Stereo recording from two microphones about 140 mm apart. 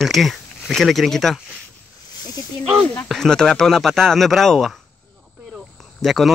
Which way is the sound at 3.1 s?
5° left (ahead or behind).